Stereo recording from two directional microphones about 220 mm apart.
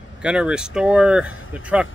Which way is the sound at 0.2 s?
5° right (ahead or behind).